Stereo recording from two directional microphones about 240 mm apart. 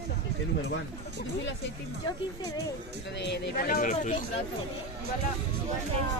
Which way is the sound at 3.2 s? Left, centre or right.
Left.